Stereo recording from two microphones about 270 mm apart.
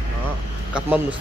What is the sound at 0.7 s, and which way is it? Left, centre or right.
Speech, centre.